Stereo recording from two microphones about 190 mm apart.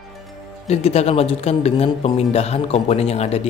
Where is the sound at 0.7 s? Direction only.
35° left (ahead or behind).